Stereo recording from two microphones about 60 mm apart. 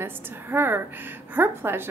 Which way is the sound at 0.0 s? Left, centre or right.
Right.